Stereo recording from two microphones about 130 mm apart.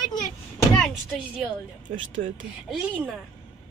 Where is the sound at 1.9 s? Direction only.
90° right.